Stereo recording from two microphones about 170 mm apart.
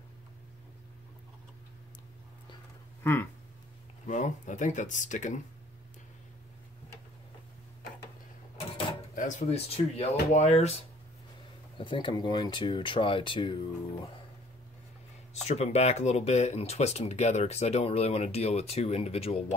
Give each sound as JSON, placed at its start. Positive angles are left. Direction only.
{"t": 3.0, "sound": "speech", "side_deg": 15}
{"t": 4.1, "sound": "speech", "side_deg": 45}
{"t": 9.1, "sound": "speech", "side_deg": 50}
{"t": 11.8, "sound": "speech", "side_deg": 30}
{"t": 15.4, "sound": "speech", "side_deg": 40}